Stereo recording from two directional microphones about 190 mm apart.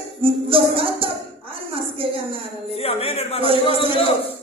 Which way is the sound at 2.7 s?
30° left (ahead or behind).